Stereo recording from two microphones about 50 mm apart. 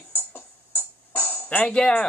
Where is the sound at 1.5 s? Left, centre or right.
Centre.